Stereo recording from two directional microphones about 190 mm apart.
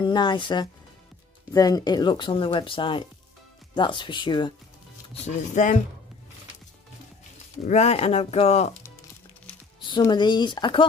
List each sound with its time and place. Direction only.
0.0 s speech: 25° left (ahead or behind)
5.5 s speech: 40° left (ahead or behind)
7.6 s speech: 35° left (ahead or behind)
9.8 s speech: 25° left (ahead or behind)